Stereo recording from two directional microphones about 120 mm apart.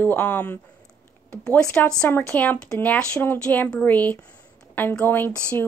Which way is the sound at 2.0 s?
15° left (ahead or behind).